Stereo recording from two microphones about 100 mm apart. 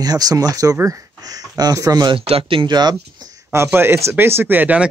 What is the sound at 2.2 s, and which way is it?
Speech, 70° right (ahead or behind).